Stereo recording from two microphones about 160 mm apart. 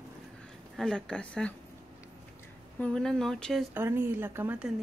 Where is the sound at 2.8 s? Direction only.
5° left (ahead or behind).